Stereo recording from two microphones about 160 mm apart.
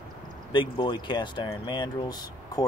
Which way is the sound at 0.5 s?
30° left (ahead or behind).